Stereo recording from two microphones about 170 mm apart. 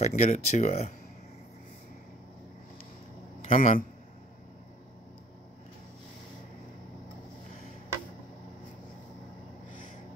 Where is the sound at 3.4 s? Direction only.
45° left (ahead or behind).